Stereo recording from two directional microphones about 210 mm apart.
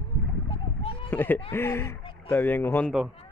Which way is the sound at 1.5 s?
10° left (ahead or behind).